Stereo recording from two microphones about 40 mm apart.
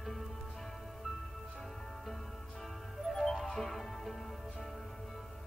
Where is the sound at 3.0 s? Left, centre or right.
Centre.